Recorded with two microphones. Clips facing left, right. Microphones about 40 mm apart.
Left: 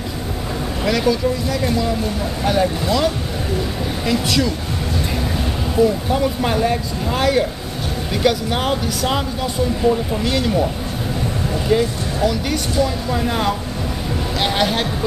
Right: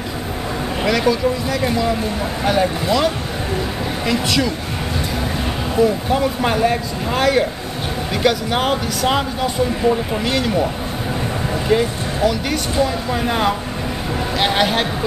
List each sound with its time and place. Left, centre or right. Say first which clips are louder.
0.8 s a man's voice: right 1 dB; centre
5.8 s a man's voice: even; centre
11.7 s a man's voice: even; centre